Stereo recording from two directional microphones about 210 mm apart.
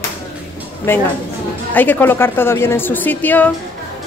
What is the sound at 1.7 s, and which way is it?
A woman's voice, 10° left (ahead or behind).